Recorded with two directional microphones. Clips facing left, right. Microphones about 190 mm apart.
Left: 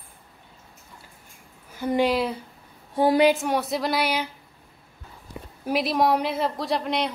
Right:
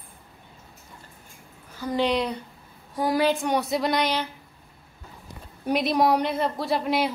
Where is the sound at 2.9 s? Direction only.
25° left (ahead or behind).